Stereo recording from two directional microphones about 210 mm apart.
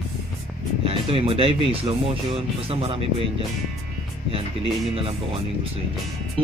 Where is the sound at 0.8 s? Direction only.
25° right (ahead or behind).